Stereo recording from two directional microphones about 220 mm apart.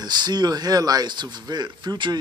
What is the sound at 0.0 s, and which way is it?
Speech, 20° right (ahead or behind).